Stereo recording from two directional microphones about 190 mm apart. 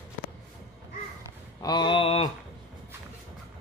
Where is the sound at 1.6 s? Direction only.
25° left (ahead or behind).